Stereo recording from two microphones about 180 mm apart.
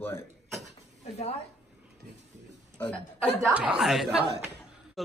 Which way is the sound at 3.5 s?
5° right (ahead or behind).